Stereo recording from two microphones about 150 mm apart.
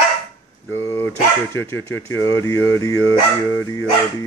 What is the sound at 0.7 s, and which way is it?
Speech, 20° left (ahead or behind).